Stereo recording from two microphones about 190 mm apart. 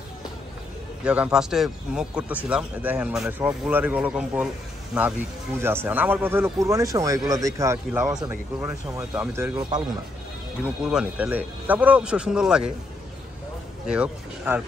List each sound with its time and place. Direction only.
1.0 s a man's voice: 5° right (ahead or behind)
9.6 s speech: 20° right (ahead or behind)
10.6 s speech: 5° right (ahead or behind)
13.8 s speech: 5° right (ahead or behind)